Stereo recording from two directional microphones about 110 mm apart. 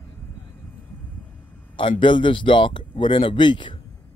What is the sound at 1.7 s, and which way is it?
Speech, 50° left (ahead or behind).